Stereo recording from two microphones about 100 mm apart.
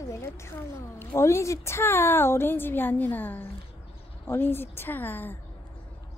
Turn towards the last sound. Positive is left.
turn(degrees=20)  # may be behind; listen again after turning